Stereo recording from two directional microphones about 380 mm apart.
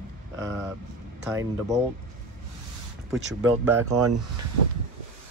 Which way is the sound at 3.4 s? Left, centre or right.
Right.